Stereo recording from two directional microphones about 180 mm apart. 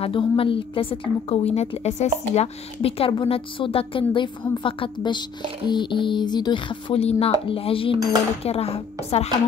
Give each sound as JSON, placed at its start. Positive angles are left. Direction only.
{"t": 0.0, "sound": "a woman's voice", "side_deg": 30}